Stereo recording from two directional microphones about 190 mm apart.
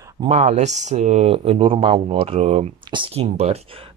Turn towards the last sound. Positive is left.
turn(degrees=-35)  # may be behind; listen again after turning